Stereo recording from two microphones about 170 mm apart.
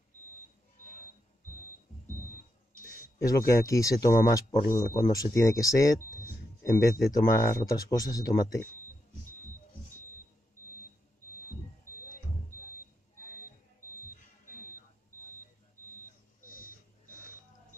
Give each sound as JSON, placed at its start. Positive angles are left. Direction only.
{"t": 3.3, "sound": "speech", "side_deg": 20}
{"t": 13.8, "sound": "music", "side_deg": 15}
{"t": 16.4, "sound": "a sound", "side_deg": 55}